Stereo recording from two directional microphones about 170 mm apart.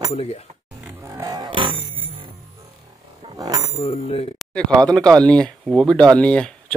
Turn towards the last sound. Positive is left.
turn(degrees=5)  # may be behind; listen again after turning